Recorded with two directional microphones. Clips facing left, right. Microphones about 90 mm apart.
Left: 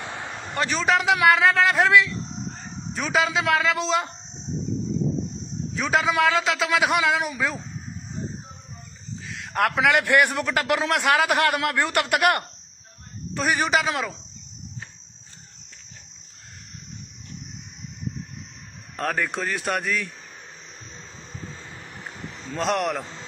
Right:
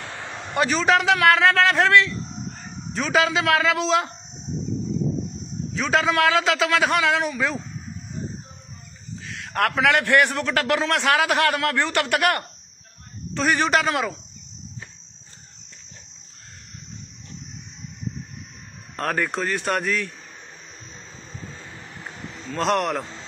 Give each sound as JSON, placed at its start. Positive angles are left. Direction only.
{"t": 0.6, "sound": "a man's voice", "side_deg": 0}
{"t": 5.7, "sound": "a man's voice", "side_deg": 0}
{"t": 9.3, "sound": "a man's voice", "side_deg": 5}
{"t": 11.4, "sound": "a man's voice", "side_deg": 20}
{"t": 13.4, "sound": "a man's voice", "side_deg": 0}
{"t": 18.9, "sound": "a man's voice", "side_deg": 0}
{"t": 22.6, "sound": "a man's voice", "side_deg": 0}